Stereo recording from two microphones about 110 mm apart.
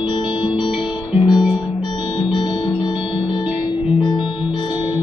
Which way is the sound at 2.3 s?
45° left (ahead or behind).